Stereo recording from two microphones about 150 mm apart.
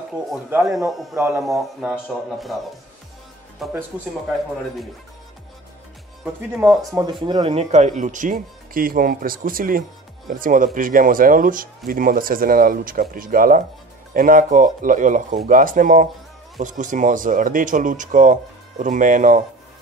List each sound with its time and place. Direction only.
0.7 s a man's voice: centre (ahead or behind)
3.6 s a man's voice: centre (ahead or behind)
6.7 s a man's voice: centre (ahead or behind)
7.0 s speech: 30° right (ahead or behind)
7.5 s speech: 50° right (ahead or behind)